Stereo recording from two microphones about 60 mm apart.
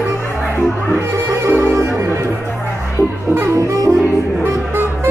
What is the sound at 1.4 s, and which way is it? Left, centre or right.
Music, right.